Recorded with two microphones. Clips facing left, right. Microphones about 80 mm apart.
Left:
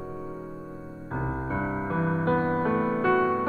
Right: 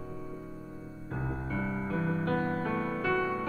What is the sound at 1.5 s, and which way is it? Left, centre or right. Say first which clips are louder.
Music: left 4 dB; left.